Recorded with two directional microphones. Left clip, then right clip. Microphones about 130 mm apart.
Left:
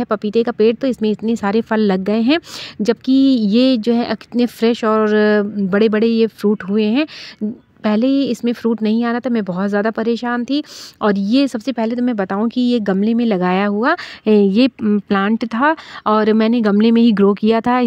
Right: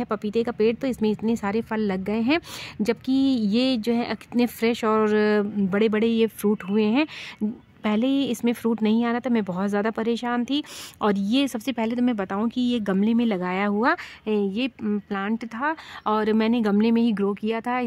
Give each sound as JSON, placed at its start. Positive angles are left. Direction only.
{"t": 0.0, "sound": "speech", "side_deg": 30}
{"t": 13.4, "sound": "speech", "side_deg": 40}
{"t": 13.7, "sound": "speech", "side_deg": 25}
{"t": 13.9, "sound": "speech", "side_deg": 60}